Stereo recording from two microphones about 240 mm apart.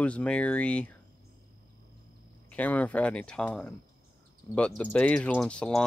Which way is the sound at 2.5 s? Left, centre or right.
Centre.